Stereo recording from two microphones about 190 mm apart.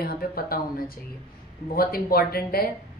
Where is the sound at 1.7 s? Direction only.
55° left (ahead or behind).